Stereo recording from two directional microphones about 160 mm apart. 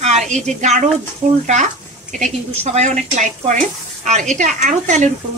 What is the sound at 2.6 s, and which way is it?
Speech, 45° right (ahead or behind).